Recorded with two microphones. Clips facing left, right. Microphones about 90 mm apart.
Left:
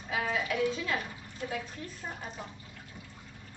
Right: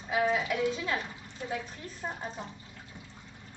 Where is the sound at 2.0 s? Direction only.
30° right (ahead or behind).